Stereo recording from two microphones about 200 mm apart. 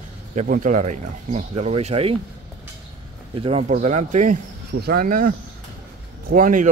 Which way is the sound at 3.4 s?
35° right (ahead or behind).